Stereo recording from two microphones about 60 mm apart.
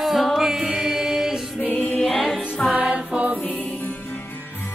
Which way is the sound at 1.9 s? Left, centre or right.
Centre.